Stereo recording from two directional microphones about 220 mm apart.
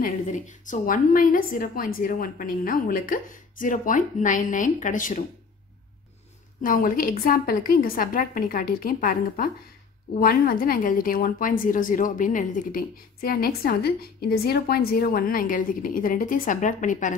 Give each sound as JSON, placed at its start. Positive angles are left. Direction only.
{"t": 0.0, "sound": "a woman's voice", "side_deg": 35}
{"t": 6.6, "sound": "a woman's voice", "side_deg": 40}